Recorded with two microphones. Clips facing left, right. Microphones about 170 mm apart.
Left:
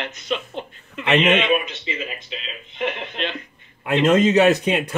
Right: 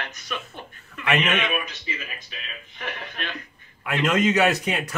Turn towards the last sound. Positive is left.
turn(degrees=25)  # may be behind; listen again after turning